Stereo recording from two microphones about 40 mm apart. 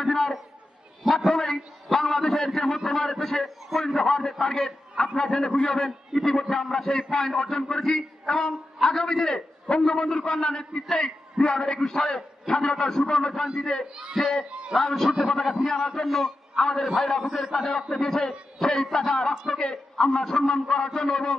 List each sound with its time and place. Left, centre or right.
0.0 s a sound: centre
1.0 s a man's voice: centre
17.9 s a man's voice: centre